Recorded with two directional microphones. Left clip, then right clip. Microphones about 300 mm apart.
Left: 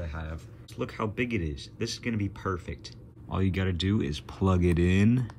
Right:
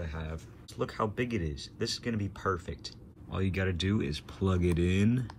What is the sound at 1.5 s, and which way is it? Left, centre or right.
Speech, centre.